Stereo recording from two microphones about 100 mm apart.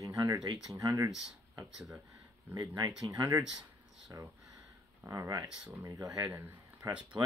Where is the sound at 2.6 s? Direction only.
35° right (ahead or behind).